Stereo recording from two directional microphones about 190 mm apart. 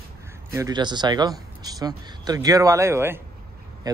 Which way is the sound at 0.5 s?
15° right (ahead or behind).